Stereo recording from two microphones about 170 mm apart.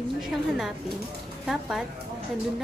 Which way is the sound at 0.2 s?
Centre (ahead or behind).